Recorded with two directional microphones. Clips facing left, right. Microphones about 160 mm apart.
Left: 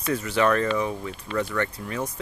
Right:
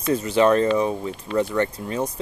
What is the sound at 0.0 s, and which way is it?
Speech, 25° right (ahead or behind).